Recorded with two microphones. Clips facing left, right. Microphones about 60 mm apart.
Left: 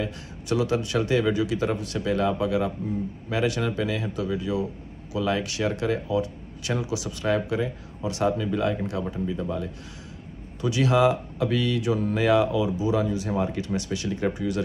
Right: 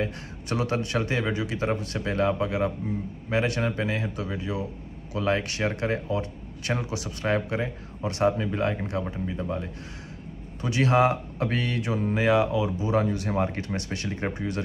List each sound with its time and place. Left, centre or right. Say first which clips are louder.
0.0 s speech: right 1 dB; right
12.7 s speech: left 1 dB; right